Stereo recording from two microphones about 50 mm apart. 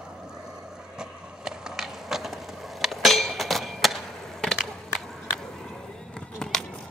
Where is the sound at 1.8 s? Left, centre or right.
Centre.